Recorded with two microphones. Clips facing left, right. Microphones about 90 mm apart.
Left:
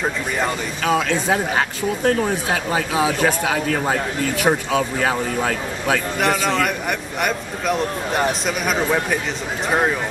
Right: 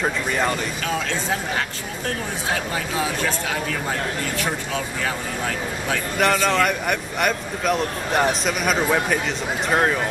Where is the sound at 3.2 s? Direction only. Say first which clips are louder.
Left 5 dB; 60° left (ahead or behind).